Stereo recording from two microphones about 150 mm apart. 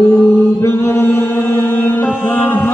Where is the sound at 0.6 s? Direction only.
15° left (ahead or behind).